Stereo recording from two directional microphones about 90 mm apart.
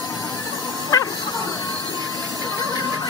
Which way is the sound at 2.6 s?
50° left (ahead or behind).